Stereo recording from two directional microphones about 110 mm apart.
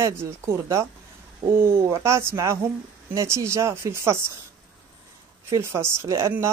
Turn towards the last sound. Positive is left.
turn(degrees=-25)  # may be behind; listen again after turning